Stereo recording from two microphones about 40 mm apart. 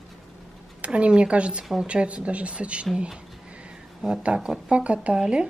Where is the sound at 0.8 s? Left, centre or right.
Right.